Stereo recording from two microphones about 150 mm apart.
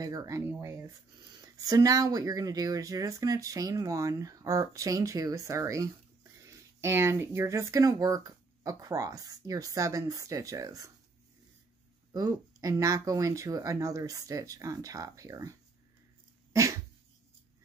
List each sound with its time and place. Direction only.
0.0 s speech: 25° right (ahead or behind)
12.1 s speech: 25° right (ahead or behind)
16.5 s dog: 20° right (ahead or behind)